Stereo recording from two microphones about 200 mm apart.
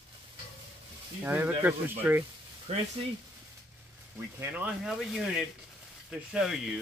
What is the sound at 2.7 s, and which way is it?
Speech, 30° right (ahead or behind).